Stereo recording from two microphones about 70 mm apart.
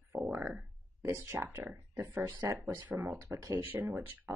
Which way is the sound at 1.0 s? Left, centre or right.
Right.